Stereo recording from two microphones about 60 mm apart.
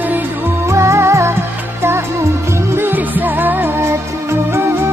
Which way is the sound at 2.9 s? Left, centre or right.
Right.